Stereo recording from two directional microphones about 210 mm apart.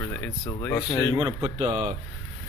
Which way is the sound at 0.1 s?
10° left (ahead or behind).